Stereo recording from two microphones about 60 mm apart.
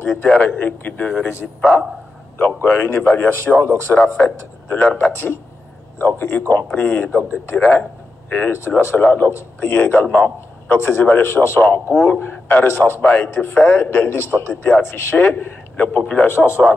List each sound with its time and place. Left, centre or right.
0.3 s a man's voice: left
1.6 s a man's voice: centre
2.3 s a man's voice: left
8.3 s a man's voice: left
13.8 s a man's voice: left
15.2 s a man's voice: left
16.0 s a man's voice: left
16.3 s a man's voice: left